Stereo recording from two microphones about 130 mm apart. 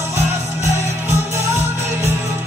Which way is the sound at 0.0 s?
20° right (ahead or behind).